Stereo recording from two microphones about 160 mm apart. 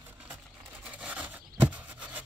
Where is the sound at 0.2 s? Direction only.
10° right (ahead or behind).